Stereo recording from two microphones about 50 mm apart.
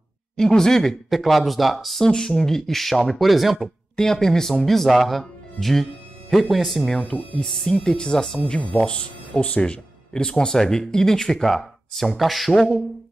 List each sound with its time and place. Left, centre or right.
0.4 s speech: centre
1.2 s speech: centre
2.0 s speech: centre
3.9 s speech: centre
7.6 s speech: centre
8.5 s speech: left; by 12.7 s centre